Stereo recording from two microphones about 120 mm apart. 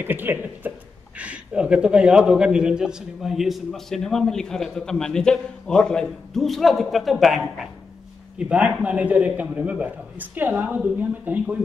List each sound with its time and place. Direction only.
0.0 s a man's voice: 15° right (ahead or behind)